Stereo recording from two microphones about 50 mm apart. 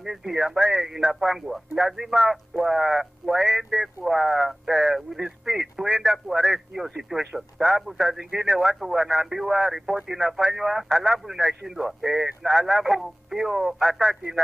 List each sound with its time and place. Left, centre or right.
0.0 s a man's voice: centre